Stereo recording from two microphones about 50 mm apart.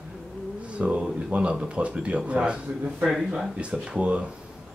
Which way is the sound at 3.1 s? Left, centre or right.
Centre.